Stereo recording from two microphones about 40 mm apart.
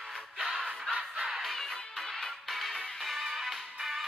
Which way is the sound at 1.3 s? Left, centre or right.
Centre.